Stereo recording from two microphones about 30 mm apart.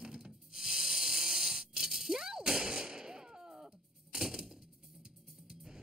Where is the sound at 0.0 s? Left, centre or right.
Right.